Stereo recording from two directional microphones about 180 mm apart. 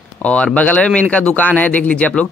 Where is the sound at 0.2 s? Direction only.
5° left (ahead or behind).